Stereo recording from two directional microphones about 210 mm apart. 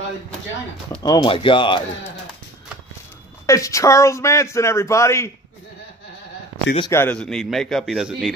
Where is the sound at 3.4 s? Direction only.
15° left (ahead or behind).